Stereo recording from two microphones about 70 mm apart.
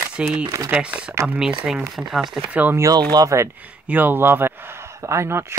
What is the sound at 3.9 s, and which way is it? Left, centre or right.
Speech, right.